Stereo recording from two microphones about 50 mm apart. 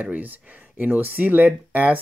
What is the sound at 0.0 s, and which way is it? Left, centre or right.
Speech, right.